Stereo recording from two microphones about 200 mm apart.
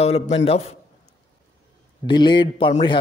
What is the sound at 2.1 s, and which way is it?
Speech, 20° left (ahead or behind).